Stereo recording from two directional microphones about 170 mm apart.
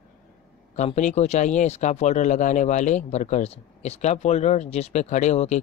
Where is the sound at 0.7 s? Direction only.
45° left (ahead or behind).